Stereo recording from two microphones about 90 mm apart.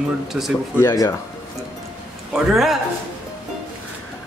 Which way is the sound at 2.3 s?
5° right (ahead or behind).